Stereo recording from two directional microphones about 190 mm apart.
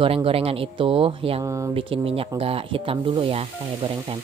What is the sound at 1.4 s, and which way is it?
Speech, 15° right (ahead or behind).